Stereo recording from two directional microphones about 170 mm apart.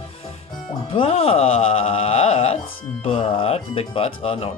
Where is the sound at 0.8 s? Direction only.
35° left (ahead or behind).